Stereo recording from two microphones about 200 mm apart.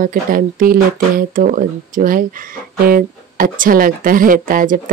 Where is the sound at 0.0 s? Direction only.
45° right (ahead or behind).